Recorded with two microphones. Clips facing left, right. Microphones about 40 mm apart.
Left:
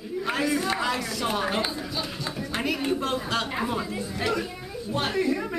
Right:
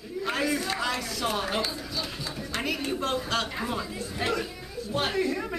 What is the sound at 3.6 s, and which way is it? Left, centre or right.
A woman's voice, centre.